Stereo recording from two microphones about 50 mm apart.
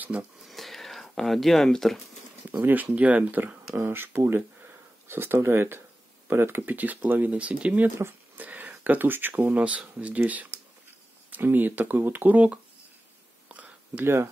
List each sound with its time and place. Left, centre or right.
0.1 s speech: right
0.5 s a sound: centre
2.4 s speech: right
3.7 s speech: right
6.6 s speech: right
7.3 s speech: right
8.4 s a sound: right
9.5 s speech: right
13.9 s speech: right